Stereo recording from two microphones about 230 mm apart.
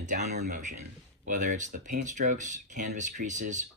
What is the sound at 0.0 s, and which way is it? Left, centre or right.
Speech, right.